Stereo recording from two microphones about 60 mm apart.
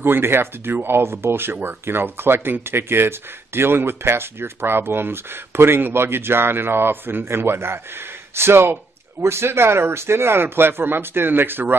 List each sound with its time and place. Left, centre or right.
0.0 s speech: right